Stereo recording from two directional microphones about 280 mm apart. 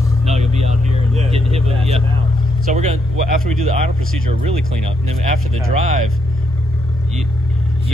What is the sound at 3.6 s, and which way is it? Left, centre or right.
Speech, right.